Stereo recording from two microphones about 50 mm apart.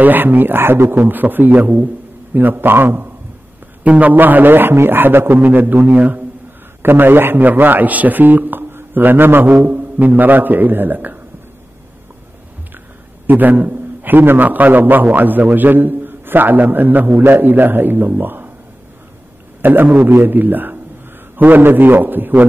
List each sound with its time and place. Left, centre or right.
0.0 s a man's voice: right
2.3 s a man's voice: right
3.8 s a man's voice: right
6.8 s a man's voice: right
13.3 s a man's voice: right
19.6 s a man's voice: right